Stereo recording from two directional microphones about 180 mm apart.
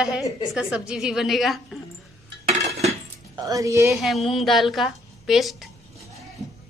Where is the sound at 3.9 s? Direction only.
Centre (ahead or behind).